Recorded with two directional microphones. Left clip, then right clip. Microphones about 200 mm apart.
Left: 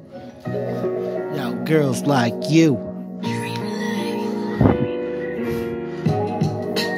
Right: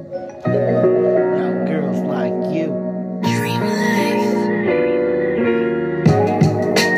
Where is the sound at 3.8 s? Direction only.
30° right (ahead or behind).